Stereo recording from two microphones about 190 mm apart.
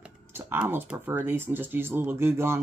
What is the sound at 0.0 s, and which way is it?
Speech, 10° right (ahead or behind).